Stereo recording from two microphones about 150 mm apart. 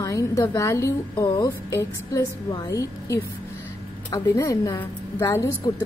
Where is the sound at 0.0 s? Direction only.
20° left (ahead or behind).